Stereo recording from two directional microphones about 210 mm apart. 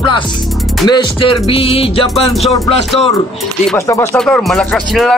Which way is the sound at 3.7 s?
15° left (ahead or behind).